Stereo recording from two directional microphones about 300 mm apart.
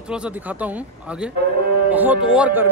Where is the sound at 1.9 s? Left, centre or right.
Centre.